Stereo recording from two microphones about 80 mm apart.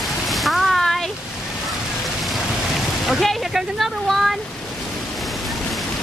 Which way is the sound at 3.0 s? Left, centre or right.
Centre.